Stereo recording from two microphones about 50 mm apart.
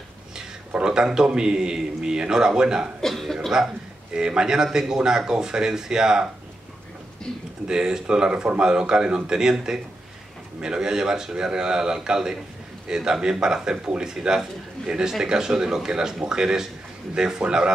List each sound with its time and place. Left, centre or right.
0.7 s speech: centre
3.0 s cough: centre
4.1 s speech: centre
7.3 s speech: centre
7.6 s speech: centre